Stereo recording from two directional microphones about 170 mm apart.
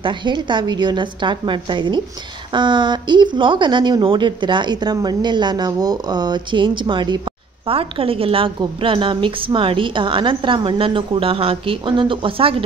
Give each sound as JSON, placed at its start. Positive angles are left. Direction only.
{"t": 0.0, "sound": "a woman's voice", "side_deg": -25}